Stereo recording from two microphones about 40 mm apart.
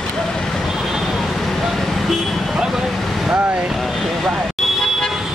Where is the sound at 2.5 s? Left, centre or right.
Centre.